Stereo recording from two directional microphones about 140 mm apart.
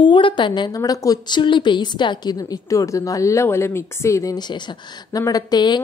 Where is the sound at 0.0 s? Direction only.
35° left (ahead or behind).